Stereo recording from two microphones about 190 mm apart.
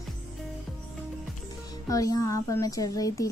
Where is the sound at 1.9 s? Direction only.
15° left (ahead or behind).